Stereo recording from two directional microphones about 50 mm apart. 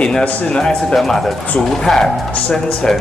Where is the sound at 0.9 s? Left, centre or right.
Centre.